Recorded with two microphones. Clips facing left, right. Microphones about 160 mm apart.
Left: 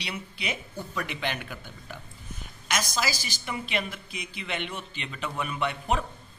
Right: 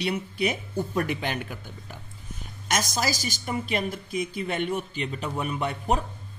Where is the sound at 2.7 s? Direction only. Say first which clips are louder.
Right 3 dB; 45° right (ahead or behind).